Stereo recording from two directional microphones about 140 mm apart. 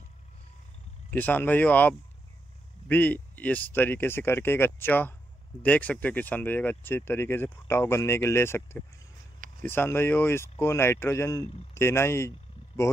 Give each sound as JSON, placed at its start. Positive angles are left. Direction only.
{"t": 1.1, "sound": "speech", "side_deg": 10}